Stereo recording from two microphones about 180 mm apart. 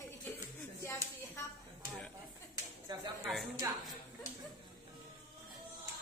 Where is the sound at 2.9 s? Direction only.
20° right (ahead or behind).